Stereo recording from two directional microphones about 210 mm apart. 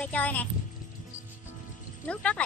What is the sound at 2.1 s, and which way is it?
Speech, 5° left (ahead or behind).